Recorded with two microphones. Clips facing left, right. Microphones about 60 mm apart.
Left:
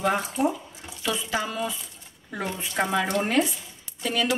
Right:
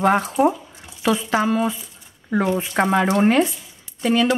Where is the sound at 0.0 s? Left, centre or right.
Right.